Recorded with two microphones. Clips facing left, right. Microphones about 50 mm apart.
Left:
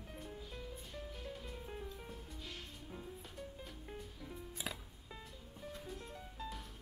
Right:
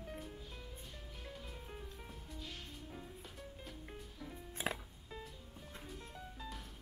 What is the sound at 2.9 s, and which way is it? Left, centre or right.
Music, centre.